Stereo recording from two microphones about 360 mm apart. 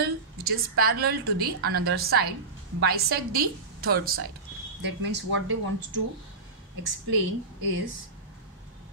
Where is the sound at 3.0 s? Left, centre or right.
Right.